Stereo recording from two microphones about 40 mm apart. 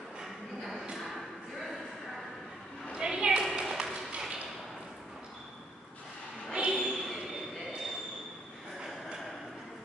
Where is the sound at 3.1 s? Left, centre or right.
Centre.